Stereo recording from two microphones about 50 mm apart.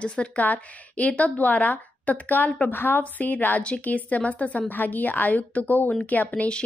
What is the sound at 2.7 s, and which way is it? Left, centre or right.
Speech, left.